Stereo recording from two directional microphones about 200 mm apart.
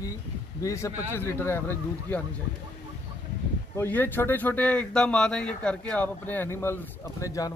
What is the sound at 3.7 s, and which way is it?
Speech, 10° left (ahead or behind).